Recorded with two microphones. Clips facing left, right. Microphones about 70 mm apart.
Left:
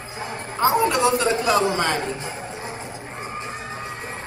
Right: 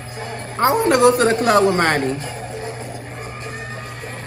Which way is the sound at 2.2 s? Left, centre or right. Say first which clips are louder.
Right 3 dB; centre.